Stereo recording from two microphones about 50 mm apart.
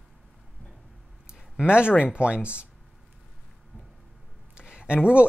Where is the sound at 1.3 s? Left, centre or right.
Centre.